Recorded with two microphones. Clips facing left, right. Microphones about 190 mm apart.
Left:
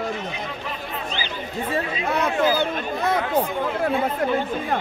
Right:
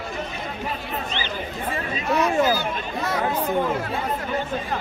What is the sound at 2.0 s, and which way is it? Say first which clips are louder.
Speech: right 2 dB; 55° left (ahead or behind).